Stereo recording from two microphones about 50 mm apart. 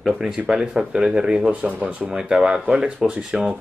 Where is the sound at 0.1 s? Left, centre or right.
Centre.